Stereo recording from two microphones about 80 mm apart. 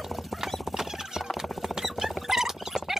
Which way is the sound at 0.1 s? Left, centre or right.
Centre.